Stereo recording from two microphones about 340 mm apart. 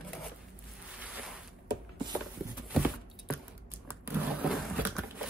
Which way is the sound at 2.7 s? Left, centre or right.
Centre.